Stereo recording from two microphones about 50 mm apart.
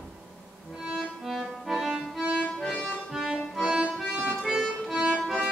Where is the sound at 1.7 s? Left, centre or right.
Centre.